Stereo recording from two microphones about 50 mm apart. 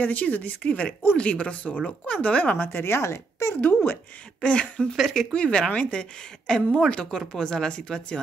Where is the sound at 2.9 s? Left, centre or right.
Left.